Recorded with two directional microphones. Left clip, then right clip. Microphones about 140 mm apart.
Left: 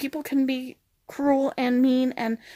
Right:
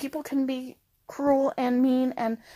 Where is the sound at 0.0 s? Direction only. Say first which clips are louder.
Left 3 dB; 35° left (ahead or behind).